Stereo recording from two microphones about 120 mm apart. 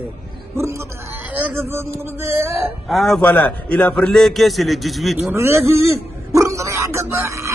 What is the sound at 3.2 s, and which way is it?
A man's voice, 10° left (ahead or behind).